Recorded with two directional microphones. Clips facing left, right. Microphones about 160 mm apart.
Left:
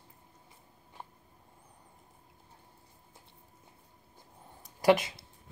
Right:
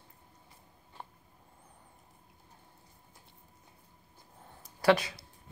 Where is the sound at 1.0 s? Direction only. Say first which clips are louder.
Even; 5° left (ahead or behind).